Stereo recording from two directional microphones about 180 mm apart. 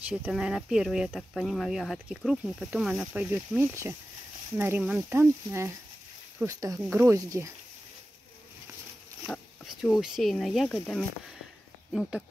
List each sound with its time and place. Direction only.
0.1 s speech: 5° right (ahead or behind)
9.3 s speech: centre (ahead or behind)